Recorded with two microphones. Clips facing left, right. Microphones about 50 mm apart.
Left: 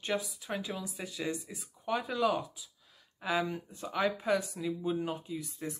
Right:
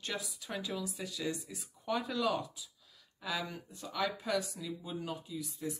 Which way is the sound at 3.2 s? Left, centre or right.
Left.